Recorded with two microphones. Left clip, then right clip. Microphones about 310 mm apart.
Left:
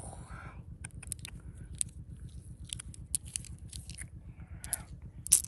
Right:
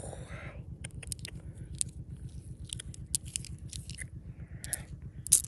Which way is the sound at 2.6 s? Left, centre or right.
Centre.